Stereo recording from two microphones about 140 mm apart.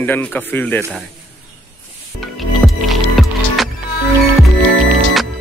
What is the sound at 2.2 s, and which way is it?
Music, centre (ahead or behind).